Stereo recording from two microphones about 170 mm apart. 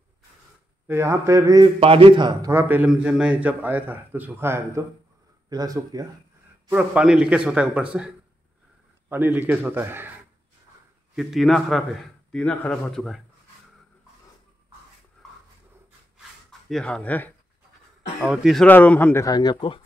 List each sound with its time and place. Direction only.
0.8 s a man's voice: 15° right (ahead or behind)
1.8 s a man's voice: 35° right (ahead or behind)
2.5 s a man's voice: 10° right (ahead or behind)
6.7 s speech: 5° right (ahead or behind)
9.1 s a man's voice: 10° right (ahead or behind)
11.1 s speech: centre (ahead or behind)
15.2 s a sound: 5° left (ahead or behind)
18.2 s speech: 5° right (ahead or behind); by 19.8 s 25° left (ahead or behind)